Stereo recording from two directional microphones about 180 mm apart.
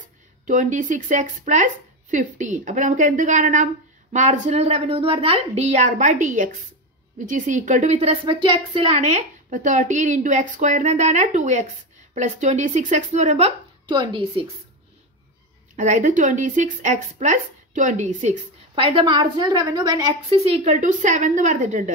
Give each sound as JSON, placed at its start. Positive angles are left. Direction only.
{"t": 0.5, "sound": "a woman's voice", "side_deg": -45}
{"t": 13.8, "sound": "a woman's voice", "side_deg": -25}
{"t": 15.7, "sound": "speech", "side_deg": -45}
{"t": 18.9, "sound": "a woman's voice", "side_deg": -25}
{"t": 20.4, "sound": "speech", "side_deg": -35}